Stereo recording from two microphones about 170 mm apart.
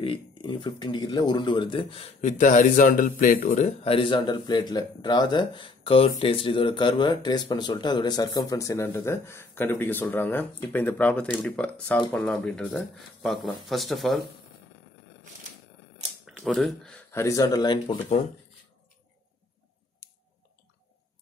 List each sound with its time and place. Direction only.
0.0 s speech: 30° left (ahead or behind)
2.2 s a man's voice: 45° left (ahead or behind)
3.8 s speech: 30° left (ahead or behind); by 14.2 s centre (ahead or behind)
16.3 s speech: centre (ahead or behind)
17.1 s speech: 15° left (ahead or behind)